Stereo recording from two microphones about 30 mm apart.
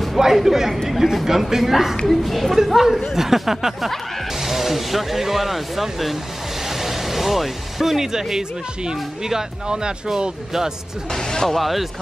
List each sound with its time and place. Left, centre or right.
0.2 s speech: centre
2.0 s speech: centre
2.5 s speech: centre; by 9.9 s right
11.1 s speech: left
11.4 s speech: centre